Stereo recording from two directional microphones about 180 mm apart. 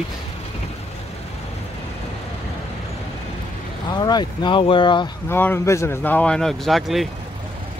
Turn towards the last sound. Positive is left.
turn(degrees=0)  # may be behind; listen again after turning